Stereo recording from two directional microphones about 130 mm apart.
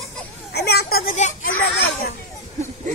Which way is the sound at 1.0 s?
70° left (ahead or behind).